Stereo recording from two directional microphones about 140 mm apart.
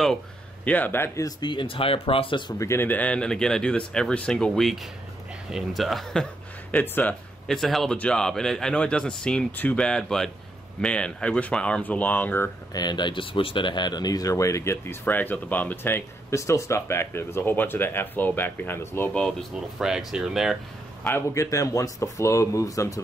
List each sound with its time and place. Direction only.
0.7 s speech: 10° left (ahead or behind); by 2.5 s 35° left (ahead or behind)
2.6 s speech: 20° left (ahead or behind)
12.7 s speech: 30° left (ahead or behind); by 19.3 s 10° left (ahead or behind)
19.5 s speech: 5° right (ahead or behind)
21.0 s speech: 15° left (ahead or behind)